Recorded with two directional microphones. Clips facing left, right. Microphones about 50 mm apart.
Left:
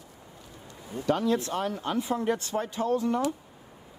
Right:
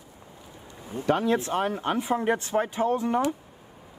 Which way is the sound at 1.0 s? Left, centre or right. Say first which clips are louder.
Right 2 dB; right.